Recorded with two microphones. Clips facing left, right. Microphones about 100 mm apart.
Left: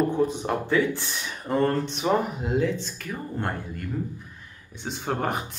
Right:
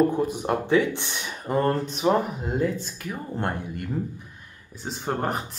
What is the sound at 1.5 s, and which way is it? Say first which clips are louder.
Speech: even; 5° right (ahead or behind).